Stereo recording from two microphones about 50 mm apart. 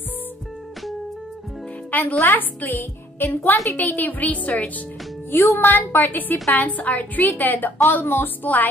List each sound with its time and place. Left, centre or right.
1.9 s music: left
2.2 s a woman's voice: left
5.3 s a woman's voice: left